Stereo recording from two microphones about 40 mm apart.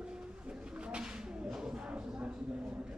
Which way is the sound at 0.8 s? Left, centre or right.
Right.